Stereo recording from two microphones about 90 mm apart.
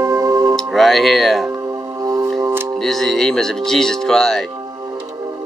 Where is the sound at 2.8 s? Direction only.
5° left (ahead or behind).